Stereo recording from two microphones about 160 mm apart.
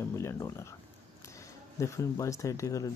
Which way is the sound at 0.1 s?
20° left (ahead or behind).